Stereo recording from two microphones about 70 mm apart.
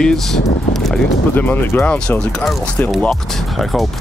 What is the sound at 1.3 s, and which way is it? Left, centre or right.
Speech, left.